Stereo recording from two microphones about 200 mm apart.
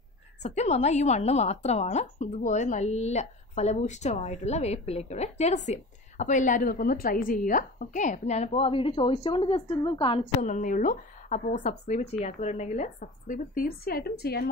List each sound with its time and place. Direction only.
0.4 s a woman's voice: 35° left (ahead or behind)
10.4 s a woman's voice: 40° left (ahead or behind)